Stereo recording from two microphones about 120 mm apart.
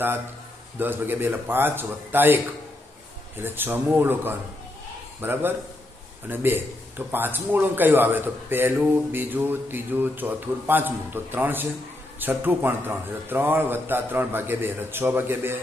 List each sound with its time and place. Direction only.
0.7 s a man's voice: 15° right (ahead or behind)